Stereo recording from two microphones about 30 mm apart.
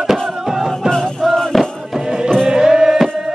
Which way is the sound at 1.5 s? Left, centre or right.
Centre.